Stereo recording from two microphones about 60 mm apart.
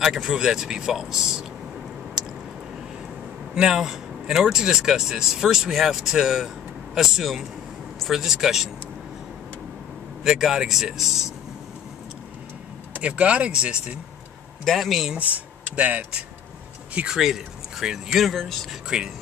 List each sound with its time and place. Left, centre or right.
0.0 s speech: centre
3.5 s speech: centre
10.2 s speech: centre
13.0 s speech: right
14.6 s speech: centre
15.1 s speech: right
17.1 s speech: centre
18.9 s speech: centre